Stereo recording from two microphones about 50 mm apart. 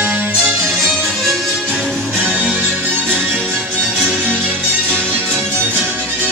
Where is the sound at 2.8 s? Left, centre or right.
Right.